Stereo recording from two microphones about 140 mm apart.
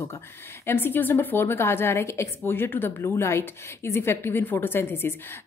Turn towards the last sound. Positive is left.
turn(degrees=15)  # may be behind; listen again after turning